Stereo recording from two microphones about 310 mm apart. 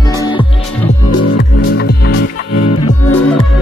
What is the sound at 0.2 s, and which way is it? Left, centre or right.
Music, centre.